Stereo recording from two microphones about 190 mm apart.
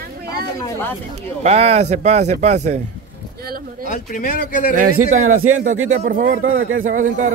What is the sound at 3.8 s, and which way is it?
Speech, 45° left (ahead or behind).